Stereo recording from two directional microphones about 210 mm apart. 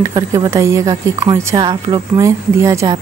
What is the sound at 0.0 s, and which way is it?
Speech, 20° right (ahead or behind).